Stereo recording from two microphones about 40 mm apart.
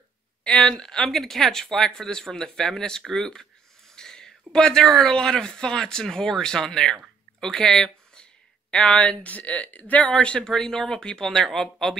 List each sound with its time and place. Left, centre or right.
0.4 s speech: left
3.9 s a sound: centre
5.1 s speech: centre; by 10.1 s left
10.4 s speech: centre